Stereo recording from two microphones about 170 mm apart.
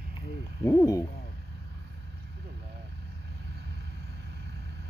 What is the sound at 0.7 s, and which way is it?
Hoot, 20° left (ahead or behind).